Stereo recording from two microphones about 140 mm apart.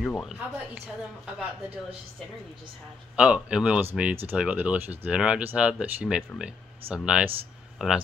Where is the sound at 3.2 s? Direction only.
5° right (ahead or behind).